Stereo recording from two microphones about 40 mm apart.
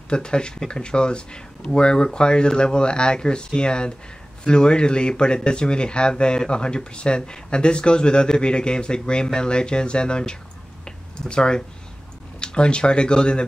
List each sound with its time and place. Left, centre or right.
0.1 s speech: left